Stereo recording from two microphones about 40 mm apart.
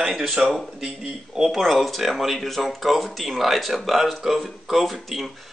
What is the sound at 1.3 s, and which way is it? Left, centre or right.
Speech, centre.